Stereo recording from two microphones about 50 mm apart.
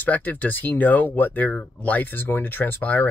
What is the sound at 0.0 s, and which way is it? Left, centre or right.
Speech, left.